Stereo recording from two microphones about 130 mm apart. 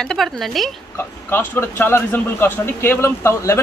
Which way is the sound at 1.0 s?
15° left (ahead or behind).